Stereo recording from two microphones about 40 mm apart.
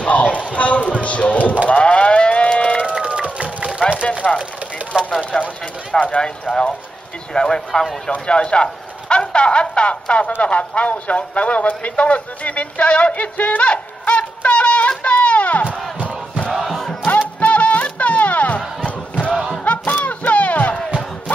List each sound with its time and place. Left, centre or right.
0.0 s a sound: left
0.6 s speech: left
1.7 s livestock: left
2.9 s run: right
4.2 s speech: left
4.9 s speech: right
5.3 s speech: left
7.3 s speech: centre
8.3 s speech: left
16.6 s battle cry: centre
17.0 s music: left
18.9 s battle cry: left
19.6 s a sound: left